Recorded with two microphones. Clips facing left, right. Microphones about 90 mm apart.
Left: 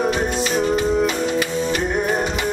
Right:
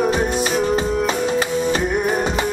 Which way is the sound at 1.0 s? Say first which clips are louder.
Right 1 dB; 30° right (ahead or behind).